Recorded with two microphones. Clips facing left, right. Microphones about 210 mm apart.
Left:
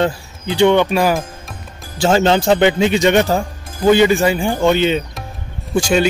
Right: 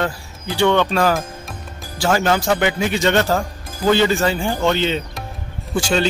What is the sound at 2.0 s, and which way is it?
Speech, 25° left (ahead or behind).